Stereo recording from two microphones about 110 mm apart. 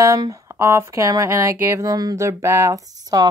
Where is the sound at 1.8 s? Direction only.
35° right (ahead or behind).